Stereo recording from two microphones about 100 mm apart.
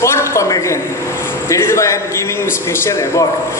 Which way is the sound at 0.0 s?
30° left (ahead or behind).